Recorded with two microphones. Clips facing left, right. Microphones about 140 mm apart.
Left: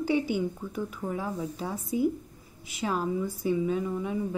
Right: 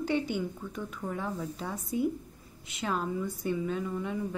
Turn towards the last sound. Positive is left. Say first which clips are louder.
# left 3 dB
turn(degrees=10)  # may be behind; listen again after turning